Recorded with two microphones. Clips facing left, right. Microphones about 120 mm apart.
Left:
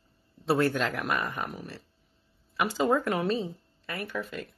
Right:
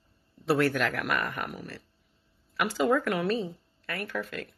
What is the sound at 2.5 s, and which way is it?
Speech, 20° left (ahead or behind).